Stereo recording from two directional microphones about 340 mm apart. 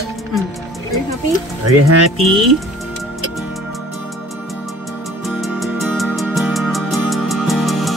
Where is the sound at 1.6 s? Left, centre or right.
Right.